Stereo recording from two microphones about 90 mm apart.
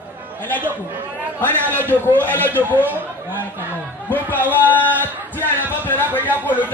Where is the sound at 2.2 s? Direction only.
20° left (ahead or behind).